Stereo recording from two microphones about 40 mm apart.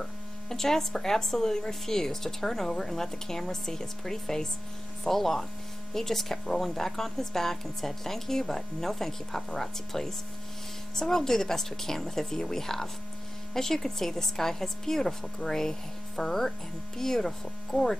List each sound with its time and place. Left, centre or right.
0.5 s a woman's voice: centre